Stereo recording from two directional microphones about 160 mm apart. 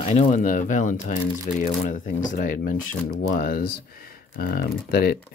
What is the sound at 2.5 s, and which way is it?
Speech, 60° left (ahead or behind).